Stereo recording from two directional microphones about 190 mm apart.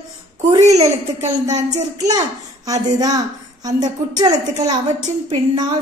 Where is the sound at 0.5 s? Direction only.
20° right (ahead or behind).